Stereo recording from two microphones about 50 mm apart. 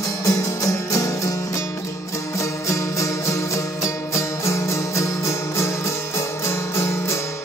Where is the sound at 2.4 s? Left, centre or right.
Left.